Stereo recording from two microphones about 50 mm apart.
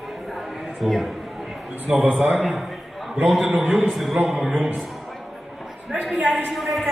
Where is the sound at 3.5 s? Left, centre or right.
Right.